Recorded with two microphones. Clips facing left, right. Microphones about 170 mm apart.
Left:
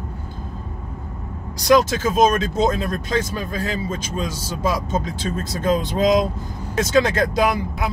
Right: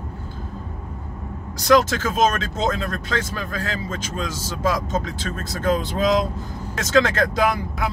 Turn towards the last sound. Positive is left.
turn(degrees=15)  # may be behind; listen again after turning